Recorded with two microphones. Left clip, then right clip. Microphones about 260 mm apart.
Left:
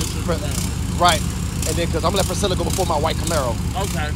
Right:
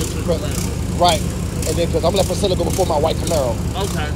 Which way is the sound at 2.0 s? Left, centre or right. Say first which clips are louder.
Right 3 dB; left.